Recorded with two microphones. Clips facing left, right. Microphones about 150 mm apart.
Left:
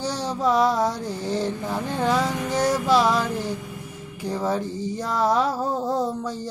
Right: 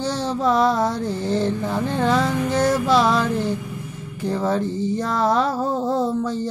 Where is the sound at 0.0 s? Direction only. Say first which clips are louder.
Right 3 dB; 10° left (ahead or behind).